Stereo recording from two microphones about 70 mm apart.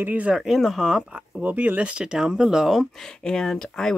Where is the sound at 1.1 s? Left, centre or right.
Centre.